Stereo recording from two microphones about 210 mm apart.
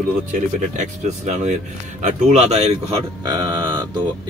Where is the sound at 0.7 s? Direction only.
35° right (ahead or behind).